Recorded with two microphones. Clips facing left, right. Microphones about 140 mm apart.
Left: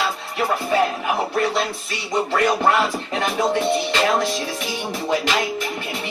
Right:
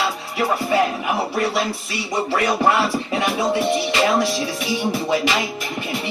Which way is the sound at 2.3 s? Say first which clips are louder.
Even; 10° right (ahead or behind).